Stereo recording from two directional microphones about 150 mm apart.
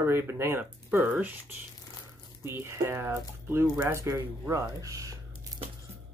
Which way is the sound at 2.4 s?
15° right (ahead or behind).